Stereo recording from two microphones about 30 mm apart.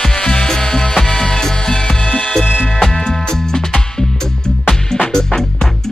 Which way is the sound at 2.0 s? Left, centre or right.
Left.